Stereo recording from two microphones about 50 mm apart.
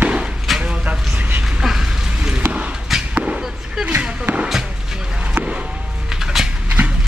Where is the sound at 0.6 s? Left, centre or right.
Right.